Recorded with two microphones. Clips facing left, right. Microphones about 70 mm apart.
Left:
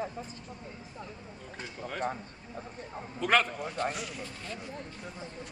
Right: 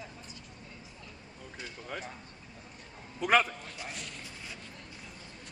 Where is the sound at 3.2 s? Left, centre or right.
Centre.